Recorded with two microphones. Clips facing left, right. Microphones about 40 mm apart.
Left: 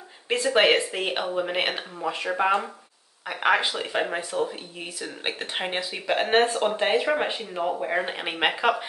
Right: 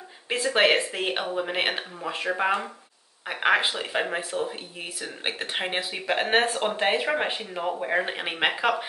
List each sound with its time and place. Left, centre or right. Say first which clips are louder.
0.5 s speech: left 1 dB; centre
4.5 s speech: even; centre
6.0 s speech: left 2 dB; centre